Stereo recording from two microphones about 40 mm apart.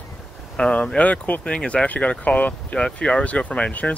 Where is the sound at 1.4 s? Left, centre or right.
Left.